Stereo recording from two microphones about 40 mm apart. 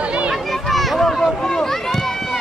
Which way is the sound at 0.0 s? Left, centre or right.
Right.